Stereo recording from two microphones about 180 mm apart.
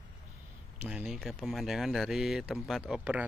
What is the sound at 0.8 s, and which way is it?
Speech, 5° right (ahead or behind).